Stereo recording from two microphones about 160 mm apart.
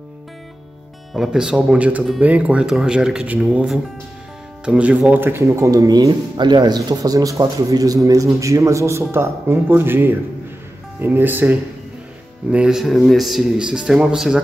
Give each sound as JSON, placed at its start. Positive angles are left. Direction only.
{"t": 1.1, "sound": "speech", "side_deg": -5}